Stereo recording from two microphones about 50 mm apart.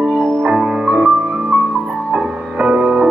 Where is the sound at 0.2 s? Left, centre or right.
Centre.